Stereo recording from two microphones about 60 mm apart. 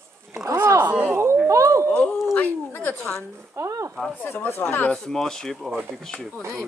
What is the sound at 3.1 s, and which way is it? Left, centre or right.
Speech, right.